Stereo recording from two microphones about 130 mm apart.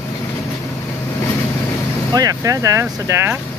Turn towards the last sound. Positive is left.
turn(degrees=-20)  # may be behind; listen again after turning